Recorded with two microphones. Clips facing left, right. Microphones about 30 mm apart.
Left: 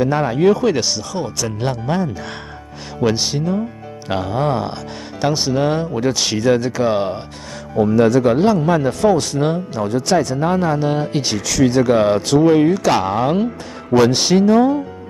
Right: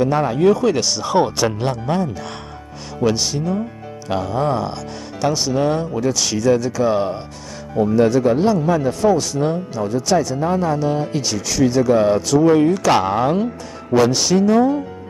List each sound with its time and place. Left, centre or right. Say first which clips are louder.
0.0 s speech: even; centre
1.0 s speech: right 7 dB; right
1.6 s speech: even; centre
3.2 s speech: left 1 dB; left
5.9 s speech: left 1 dB; left
7.8 s speech: left 2 dB; left
8.5 s speech: left 2 dB; left
8.8 s speech: left 1 dB; left
11.4 s speech: left 2 dB; left
11.7 s speech: even; left
12.4 s speech: even; left
13.0 s speech: even; centre
14.1 s speech: left 2 dB; left